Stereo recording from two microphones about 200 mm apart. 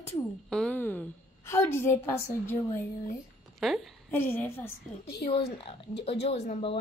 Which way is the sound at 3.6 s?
Centre (ahead or behind).